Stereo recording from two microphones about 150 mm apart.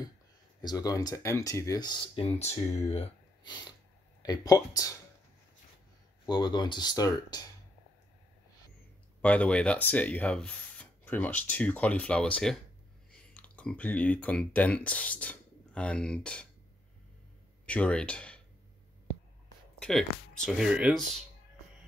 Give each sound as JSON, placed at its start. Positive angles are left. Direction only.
{"t": 0.6, "sound": "speech", "side_deg": 25}
{"t": 2.1, "sound": "speech", "side_deg": 45}
{"t": 4.2, "sound": "speech", "side_deg": 25}
{"t": 6.2, "sound": "speech", "side_deg": 30}
{"t": 9.2, "sound": "speech", "side_deg": 10}
{"t": 17.6, "sound": "speech", "side_deg": 10}
{"t": 19.8, "sound": "speech", "side_deg": 5}